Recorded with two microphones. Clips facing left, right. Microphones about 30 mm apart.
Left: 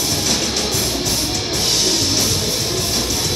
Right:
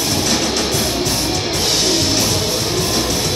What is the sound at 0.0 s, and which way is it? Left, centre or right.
Music, centre.